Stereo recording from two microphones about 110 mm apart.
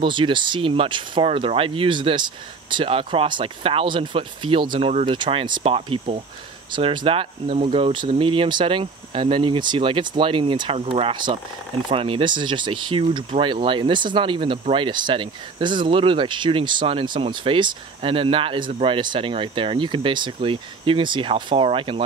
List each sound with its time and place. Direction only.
0.0 s speech: 45° right (ahead or behind); by 5.0 s 65° right (ahead or behind)
5.0 s speech: 45° right (ahead or behind); by 6.2 s 70° right (ahead or behind)
6.7 s speech: 45° right (ahead or behind)